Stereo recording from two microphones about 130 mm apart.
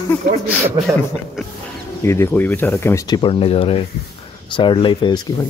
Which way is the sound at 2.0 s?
20° left (ahead or behind).